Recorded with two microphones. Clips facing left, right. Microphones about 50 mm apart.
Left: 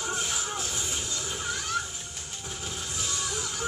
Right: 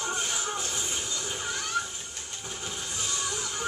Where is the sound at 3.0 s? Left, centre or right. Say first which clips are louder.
Even; centre.